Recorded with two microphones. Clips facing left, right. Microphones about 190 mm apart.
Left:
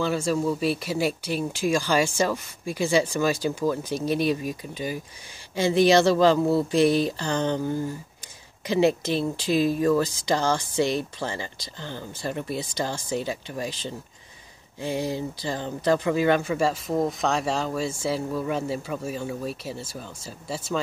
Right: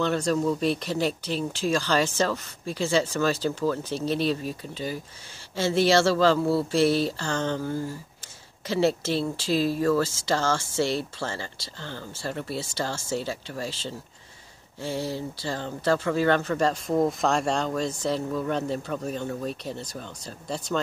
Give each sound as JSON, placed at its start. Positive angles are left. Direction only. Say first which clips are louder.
{"t": 0.0, "sound": "speech", "louder": "even", "side_deg": 5}